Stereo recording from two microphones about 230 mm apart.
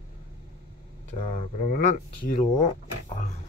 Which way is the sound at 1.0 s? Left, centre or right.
Left.